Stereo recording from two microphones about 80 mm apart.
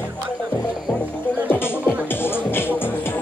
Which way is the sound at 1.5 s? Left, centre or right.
Left.